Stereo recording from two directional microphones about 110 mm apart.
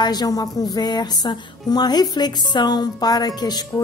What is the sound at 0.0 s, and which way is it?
A woman's voice, 40° left (ahead or behind).